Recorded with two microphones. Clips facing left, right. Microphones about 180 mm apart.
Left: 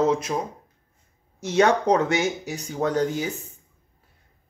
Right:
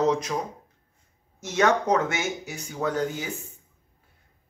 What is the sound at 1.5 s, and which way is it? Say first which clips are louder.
Speech: left 3 dB; 35° left (ahead or behind).